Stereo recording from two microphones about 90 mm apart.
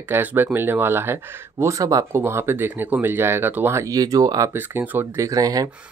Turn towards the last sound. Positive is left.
turn(degrees=-40)  # may be behind; listen again after turning